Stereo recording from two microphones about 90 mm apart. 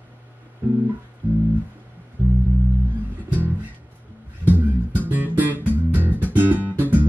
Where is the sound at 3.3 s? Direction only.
20° right (ahead or behind).